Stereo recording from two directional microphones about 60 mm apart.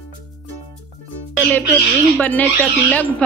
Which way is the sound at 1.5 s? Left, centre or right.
Left.